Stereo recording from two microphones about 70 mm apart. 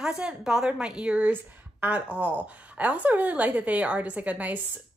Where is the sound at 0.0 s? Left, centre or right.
Centre.